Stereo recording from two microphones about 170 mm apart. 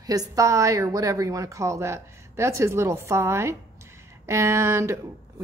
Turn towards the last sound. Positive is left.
turn(degrees=-15)  # may be behind; listen again after turning